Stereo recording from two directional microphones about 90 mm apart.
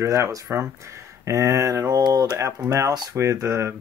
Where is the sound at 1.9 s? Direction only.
45° right (ahead or behind).